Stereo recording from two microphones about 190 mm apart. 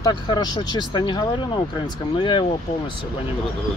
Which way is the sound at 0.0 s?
20° left (ahead or behind).